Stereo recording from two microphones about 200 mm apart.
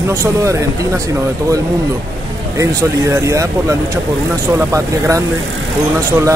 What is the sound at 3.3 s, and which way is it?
Speech, 15° right (ahead or behind).